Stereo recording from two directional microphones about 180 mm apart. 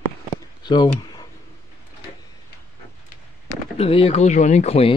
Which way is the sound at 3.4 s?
35° left (ahead or behind).